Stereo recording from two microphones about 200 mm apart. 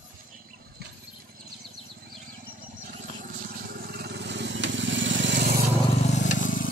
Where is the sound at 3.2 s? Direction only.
45° right (ahead or behind); by 5.5 s 60° right (ahead or behind).